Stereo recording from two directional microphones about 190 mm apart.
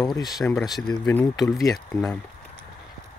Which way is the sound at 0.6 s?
Centre (ahead or behind).